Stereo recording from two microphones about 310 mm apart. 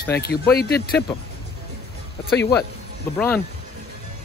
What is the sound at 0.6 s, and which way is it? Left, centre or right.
Speech, left.